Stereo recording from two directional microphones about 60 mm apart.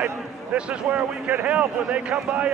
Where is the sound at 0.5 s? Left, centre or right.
Right.